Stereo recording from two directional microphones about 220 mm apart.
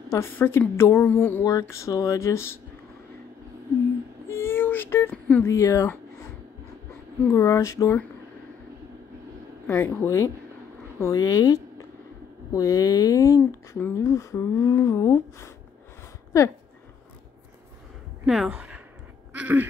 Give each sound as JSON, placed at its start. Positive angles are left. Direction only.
{"t": 0.1, "sound": "speech", "side_deg": 10}
{"t": 4.3, "sound": "speech", "side_deg": 10}
{"t": 7.2, "sound": "speech", "side_deg": 15}
{"t": 9.7, "sound": "a woman's voice", "side_deg": 10}
{"t": 18.2, "sound": "speech", "side_deg": -5}
{"t": 19.3, "sound": "a sound", "side_deg": -5}